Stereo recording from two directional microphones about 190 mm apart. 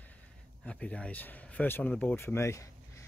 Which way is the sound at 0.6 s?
5° left (ahead or behind).